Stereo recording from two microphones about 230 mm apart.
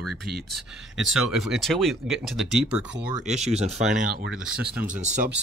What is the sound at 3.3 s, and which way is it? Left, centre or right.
Speech, right.